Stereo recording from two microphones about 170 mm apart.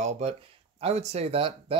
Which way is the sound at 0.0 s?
35° right (ahead or behind).